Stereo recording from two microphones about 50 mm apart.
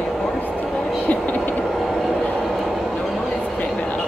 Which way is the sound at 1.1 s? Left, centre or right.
Left.